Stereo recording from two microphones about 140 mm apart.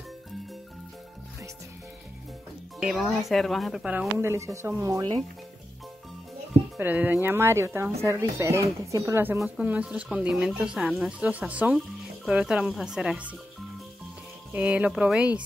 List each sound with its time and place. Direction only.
2.8 s speech: centre (ahead or behind)
4.2 s speech: 20° right (ahead or behind)
6.8 s speech: 15° right (ahead or behind)
14.5 s speech: 10° right (ahead or behind)